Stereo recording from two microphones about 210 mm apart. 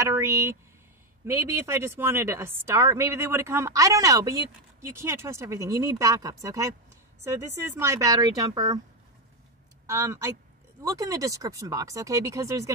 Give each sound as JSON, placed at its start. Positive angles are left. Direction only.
{"t": 0.0, "sound": "a woman's voice", "side_deg": -15}
{"t": 9.8, "sound": "a woman's voice", "side_deg": -15}